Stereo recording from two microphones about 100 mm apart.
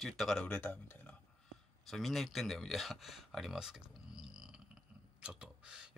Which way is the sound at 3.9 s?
5° right (ahead or behind).